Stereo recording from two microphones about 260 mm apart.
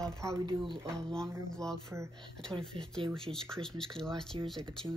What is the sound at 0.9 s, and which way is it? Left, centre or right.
Speech, centre.